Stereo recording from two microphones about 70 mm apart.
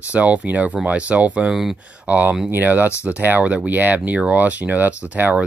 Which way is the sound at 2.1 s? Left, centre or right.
Right.